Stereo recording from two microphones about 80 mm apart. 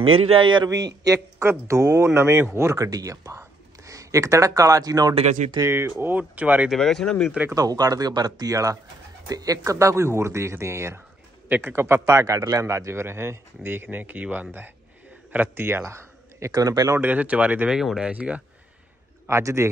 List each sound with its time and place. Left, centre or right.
0.4 s speech: right
0.7 s speech: right
1.4 s speech: right
5.6 s speech: right
6.7 s speech: centre
7.5 s speech: right
11.4 s a man's voice: right
11.7 s speech: right
16.9 s speech: right
17.7 s speech: centre
19.2 s speech: right